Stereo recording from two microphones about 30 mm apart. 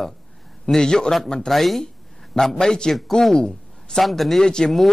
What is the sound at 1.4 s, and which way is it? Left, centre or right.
Speech, centre.